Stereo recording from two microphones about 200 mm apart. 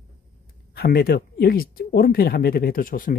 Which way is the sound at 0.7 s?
50° left (ahead or behind).